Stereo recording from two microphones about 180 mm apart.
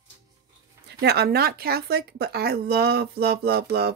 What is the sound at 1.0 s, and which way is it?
Speech, 60° right (ahead or behind).